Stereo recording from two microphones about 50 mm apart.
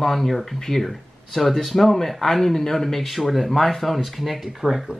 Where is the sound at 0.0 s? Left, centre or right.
Centre.